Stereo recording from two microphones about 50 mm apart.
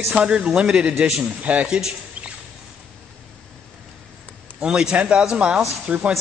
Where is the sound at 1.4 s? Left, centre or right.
Right.